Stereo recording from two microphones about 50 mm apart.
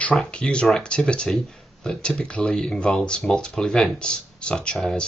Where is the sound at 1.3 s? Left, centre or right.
Centre.